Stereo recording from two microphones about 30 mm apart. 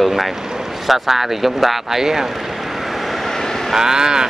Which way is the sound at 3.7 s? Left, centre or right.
Right.